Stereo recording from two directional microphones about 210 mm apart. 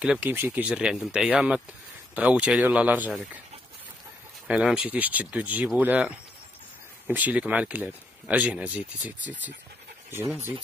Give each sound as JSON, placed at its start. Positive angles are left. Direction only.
{"t": 0.0, "sound": "speech", "side_deg": -5}
{"t": 4.5, "sound": "speech", "side_deg": 0}